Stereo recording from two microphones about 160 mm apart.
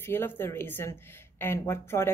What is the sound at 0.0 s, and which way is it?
A woman's voice, 15° left (ahead or behind).